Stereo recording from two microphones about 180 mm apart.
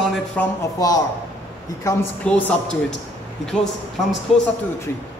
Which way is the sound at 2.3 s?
5° left (ahead or behind).